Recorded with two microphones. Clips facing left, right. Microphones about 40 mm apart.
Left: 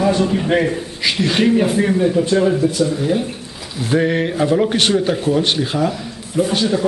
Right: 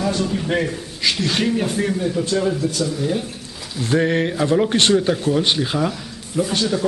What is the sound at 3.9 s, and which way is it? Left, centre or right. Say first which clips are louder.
A man's voice: left 2 dB; centre.